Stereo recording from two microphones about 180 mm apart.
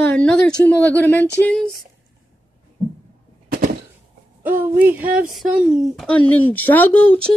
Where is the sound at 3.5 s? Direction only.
55° right (ahead or behind).